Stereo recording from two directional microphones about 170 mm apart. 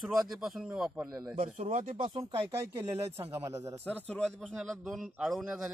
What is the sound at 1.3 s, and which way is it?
Speech, 40° right (ahead or behind).